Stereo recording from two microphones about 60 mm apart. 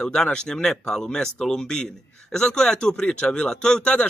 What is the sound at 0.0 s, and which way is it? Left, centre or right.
Speech, centre.